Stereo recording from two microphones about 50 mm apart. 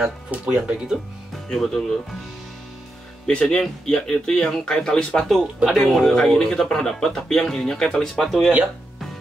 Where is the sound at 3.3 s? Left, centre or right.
Left.